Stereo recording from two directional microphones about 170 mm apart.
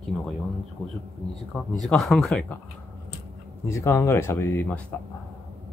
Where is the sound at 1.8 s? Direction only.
Centre (ahead or behind).